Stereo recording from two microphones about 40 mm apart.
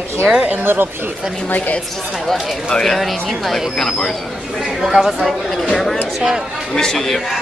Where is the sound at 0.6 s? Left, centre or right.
Right.